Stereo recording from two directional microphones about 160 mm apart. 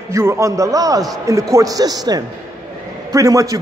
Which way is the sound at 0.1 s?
20° right (ahead or behind).